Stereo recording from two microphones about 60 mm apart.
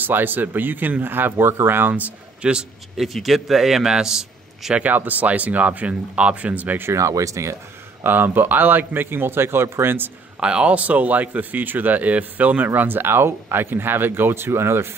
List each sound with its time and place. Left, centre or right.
0.0 s speech: right
2.4 s a man's voice: centre
3.0 s a man's voice: centre
4.7 s speech: right
6.9 s speech: right
8.0 s speech: right
10.4 s speech: centre; by 14.9 s right